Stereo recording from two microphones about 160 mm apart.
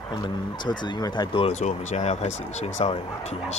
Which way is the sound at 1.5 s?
45° left (ahead or behind).